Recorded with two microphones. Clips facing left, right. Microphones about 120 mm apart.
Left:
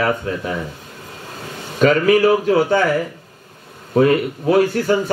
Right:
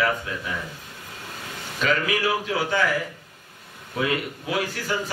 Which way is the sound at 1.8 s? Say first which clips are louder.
Left 11 dB; 45° left (ahead or behind).